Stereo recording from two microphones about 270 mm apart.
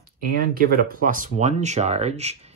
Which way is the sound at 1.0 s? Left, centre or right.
Right.